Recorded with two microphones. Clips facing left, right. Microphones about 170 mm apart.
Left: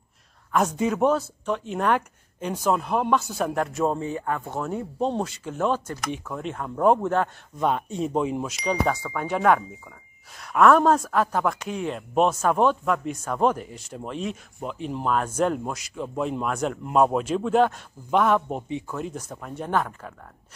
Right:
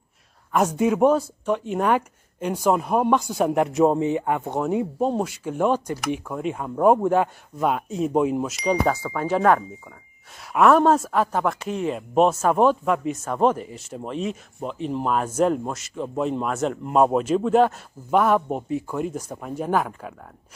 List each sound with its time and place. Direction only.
0.5 s speech: 10° right (ahead or behind)